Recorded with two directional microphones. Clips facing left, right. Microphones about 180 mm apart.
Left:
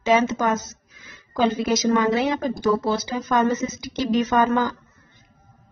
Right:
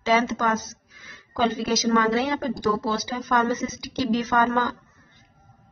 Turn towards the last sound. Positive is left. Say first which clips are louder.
# left 3 dB
turn(degrees=20)  # may be behind; listen again after turning